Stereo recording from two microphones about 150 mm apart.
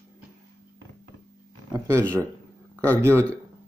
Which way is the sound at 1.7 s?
20° right (ahead or behind).